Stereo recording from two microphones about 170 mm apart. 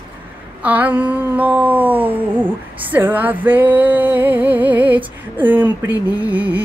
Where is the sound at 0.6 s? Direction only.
10° right (ahead or behind).